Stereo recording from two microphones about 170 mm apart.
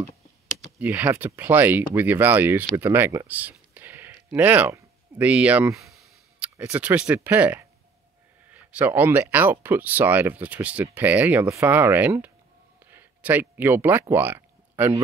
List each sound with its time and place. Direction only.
0.7 s speech: 10° right (ahead or behind)
6.5 s speech: 10° right (ahead or behind)